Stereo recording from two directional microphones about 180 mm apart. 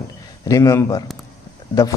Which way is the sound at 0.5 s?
20° left (ahead or behind).